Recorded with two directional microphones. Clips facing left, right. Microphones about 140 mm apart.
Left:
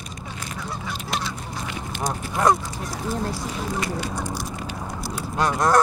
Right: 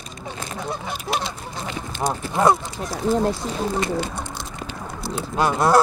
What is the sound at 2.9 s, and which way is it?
Speech, 25° right (ahead or behind).